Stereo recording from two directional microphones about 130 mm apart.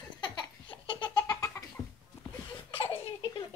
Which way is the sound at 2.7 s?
45° left (ahead or behind).